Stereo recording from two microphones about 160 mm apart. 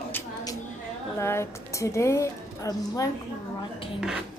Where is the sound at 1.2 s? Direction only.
15° left (ahead or behind).